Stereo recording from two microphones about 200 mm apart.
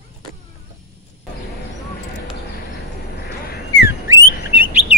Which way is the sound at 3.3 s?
50° left (ahead or behind).